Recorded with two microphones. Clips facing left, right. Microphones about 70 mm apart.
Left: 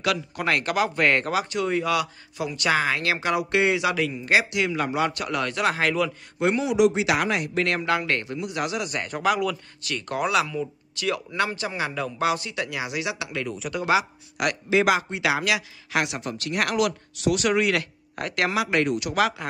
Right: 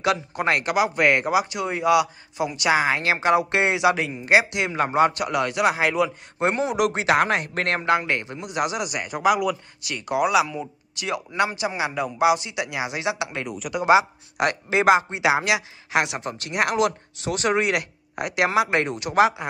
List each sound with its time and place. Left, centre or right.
0.0 s speech: right
5.2 s a man's voice: centre
6.4 s speech: right
7.9 s a man's voice: right
10.5 s speech: right